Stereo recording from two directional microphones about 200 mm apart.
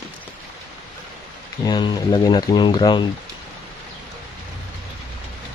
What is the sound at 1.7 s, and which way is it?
Speech, 20° left (ahead or behind).